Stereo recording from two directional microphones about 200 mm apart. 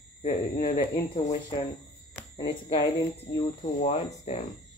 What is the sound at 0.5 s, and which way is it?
Speech, 30° left (ahead or behind).